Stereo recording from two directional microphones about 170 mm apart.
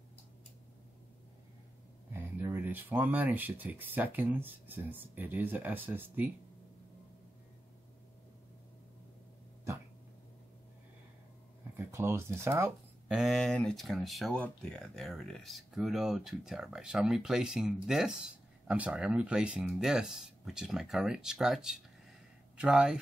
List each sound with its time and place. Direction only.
2.1 s speech: 15° right (ahead or behind)
11.7 s speech: 15° right (ahead or behind)